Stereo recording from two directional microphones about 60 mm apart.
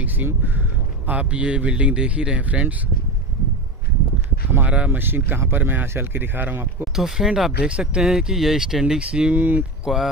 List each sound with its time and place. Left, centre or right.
0.0 s speech: right
4.6 s speech: right
4.9 s speech: right
6.8 s speech: centre
9.3 s speech: right